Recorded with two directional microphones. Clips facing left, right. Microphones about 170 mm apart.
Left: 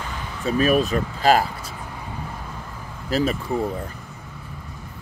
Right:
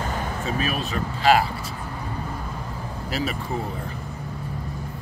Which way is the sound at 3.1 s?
40° left (ahead or behind).